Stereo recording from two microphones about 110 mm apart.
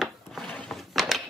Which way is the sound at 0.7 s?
Centre (ahead or behind).